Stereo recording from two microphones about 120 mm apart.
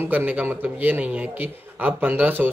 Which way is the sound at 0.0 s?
15° right (ahead or behind).